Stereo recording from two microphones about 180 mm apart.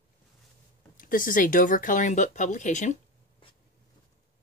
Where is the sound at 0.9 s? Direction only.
50° left (ahead or behind).